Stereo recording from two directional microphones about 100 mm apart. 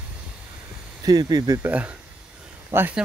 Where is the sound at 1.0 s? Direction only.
45° right (ahead or behind).